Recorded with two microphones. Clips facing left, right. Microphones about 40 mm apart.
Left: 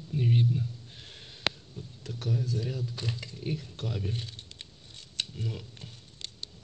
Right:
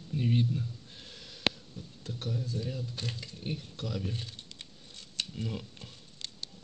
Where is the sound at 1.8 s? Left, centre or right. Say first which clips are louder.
Left 2 dB; left.